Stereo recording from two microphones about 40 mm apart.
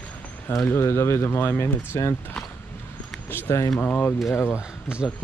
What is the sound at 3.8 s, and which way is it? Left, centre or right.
Speech, left.